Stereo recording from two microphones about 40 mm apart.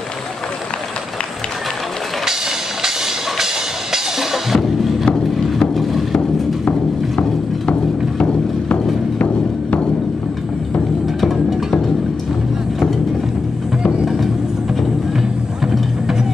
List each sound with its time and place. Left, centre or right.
3.9 s music: centre
5.2 s a sound: centre
8.2 s music: left
14.0 s music: centre
15.6 s music: centre